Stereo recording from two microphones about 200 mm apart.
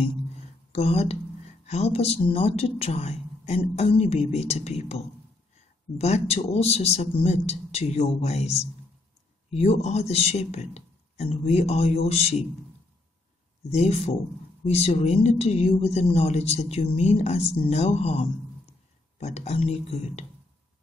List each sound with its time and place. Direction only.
0.7 s a woman's voice: 30° left (ahead or behind)
13.7 s a woman's voice: 35° left (ahead or behind)